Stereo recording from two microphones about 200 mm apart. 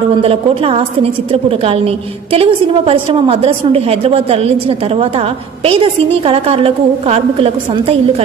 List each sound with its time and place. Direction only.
0.2 s a woman's voice: 30° right (ahead or behind)